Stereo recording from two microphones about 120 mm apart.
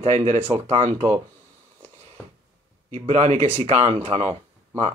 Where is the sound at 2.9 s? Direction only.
75° right (ahead or behind).